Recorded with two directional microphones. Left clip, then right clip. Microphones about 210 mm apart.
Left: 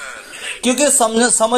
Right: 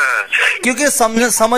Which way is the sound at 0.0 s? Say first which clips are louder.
Right 16 dB; 45° right (ahead or behind).